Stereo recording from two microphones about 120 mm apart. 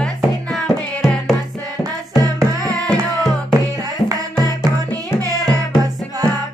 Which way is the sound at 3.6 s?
30° right (ahead or behind).